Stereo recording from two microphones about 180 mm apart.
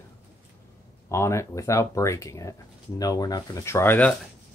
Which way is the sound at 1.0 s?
15° left (ahead or behind).